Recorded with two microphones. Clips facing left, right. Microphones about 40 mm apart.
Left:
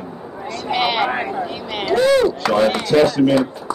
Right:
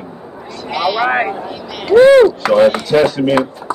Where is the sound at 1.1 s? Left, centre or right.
Right.